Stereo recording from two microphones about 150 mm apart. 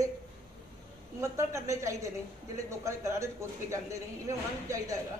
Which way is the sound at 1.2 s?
20° right (ahead or behind).